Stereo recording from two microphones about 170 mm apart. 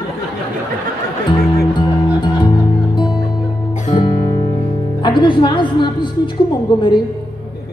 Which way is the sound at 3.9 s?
25° left (ahead or behind).